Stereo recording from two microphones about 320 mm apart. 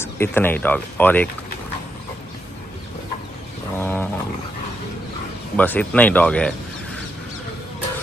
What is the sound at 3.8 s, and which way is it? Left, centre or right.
Roaring cats, centre.